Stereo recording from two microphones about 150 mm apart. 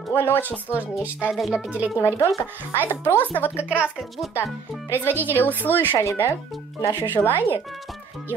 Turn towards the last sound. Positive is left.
turn(degrees=15)  # may be behind; listen again after turning